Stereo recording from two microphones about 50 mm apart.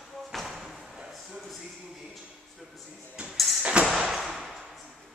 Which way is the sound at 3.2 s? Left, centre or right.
Right.